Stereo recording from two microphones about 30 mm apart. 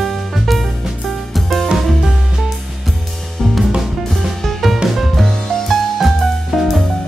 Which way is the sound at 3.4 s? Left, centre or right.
Centre.